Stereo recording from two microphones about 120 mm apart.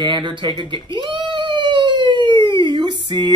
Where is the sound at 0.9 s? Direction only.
45° right (ahead or behind).